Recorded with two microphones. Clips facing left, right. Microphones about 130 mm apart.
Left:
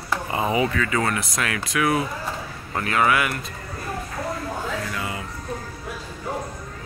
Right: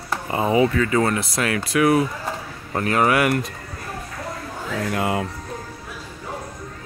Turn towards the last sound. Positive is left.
turn(degrees=-65)  # may be behind; listen again after turning